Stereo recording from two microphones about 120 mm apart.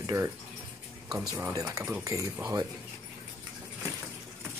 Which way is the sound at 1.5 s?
30° right (ahead or behind).